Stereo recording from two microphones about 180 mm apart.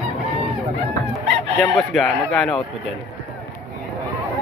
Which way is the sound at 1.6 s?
Centre (ahead or behind).